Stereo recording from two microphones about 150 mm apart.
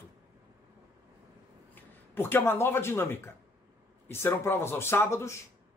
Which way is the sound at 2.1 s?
15° left (ahead or behind).